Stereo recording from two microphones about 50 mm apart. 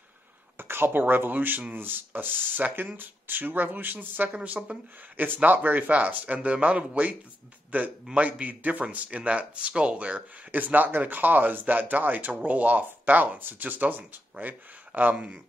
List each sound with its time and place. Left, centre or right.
0.6 s speech: right